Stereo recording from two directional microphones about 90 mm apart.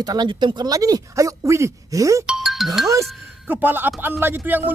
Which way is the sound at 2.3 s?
Centre (ahead or behind).